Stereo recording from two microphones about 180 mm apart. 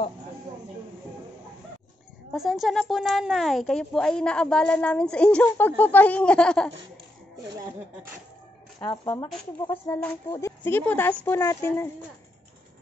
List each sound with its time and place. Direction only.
2.3 s a woman's voice: centre (ahead or behind)
8.7 s speech: 25° left (ahead or behind)
9.4 s speech: 10° left (ahead or behind)